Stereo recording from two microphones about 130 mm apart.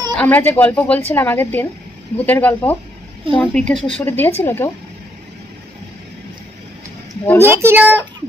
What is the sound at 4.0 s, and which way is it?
Speech, 15° left (ahead or behind).